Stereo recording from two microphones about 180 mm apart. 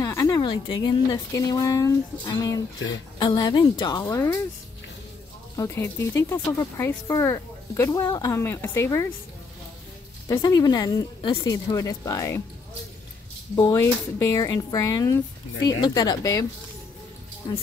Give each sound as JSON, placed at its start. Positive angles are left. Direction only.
{"t": 0.0, "sound": "a sound", "side_deg": 20}
{"t": 0.8, "sound": "a woman's voice", "side_deg": 20}
{"t": 4.0, "sound": "speech", "side_deg": 15}
{"t": 5.6, "sound": "speech", "side_deg": 15}
{"t": 10.2, "sound": "a woman's voice", "side_deg": 20}
{"t": 13.6, "sound": "a woman's voice", "side_deg": 15}